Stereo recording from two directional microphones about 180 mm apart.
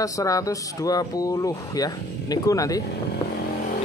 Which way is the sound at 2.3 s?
20° left (ahead or behind).